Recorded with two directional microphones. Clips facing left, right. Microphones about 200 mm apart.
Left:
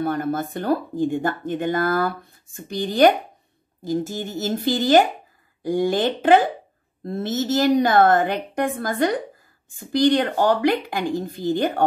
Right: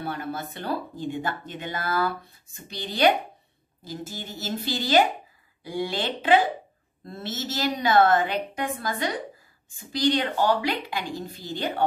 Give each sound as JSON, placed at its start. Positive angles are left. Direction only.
{"t": 0.0, "sound": "speech", "side_deg": 45}